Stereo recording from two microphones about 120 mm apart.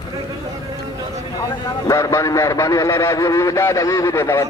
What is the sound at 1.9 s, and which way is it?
Honk, 25° left (ahead or behind).